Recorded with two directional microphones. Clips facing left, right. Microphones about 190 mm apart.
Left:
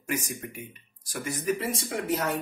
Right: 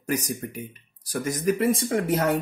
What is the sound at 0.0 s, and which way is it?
Speech, 40° right (ahead or behind).